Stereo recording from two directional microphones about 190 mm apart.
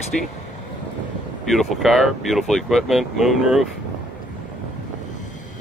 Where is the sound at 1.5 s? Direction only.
Centre (ahead or behind).